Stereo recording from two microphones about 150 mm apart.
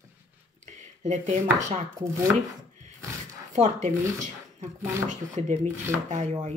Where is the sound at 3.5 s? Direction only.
50° right (ahead or behind).